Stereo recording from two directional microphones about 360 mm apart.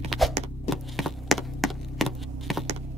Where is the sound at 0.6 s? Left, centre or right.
Centre.